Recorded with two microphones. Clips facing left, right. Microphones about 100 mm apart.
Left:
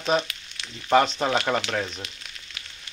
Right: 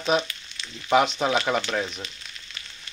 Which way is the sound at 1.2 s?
Centre (ahead or behind).